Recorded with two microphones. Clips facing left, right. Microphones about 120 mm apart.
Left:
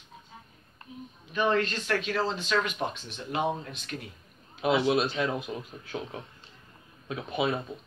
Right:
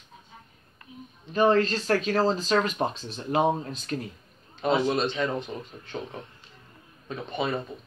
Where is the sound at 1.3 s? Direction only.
35° right (ahead or behind).